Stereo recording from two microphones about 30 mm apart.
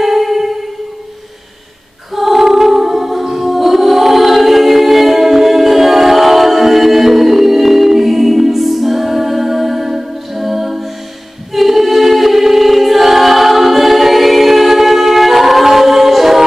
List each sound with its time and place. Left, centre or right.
0.0 s music: centre
2.1 s music: centre
3.3 s choir: centre
10.3 s a capella: centre
11.5 s choir: centre
15.6 s music: centre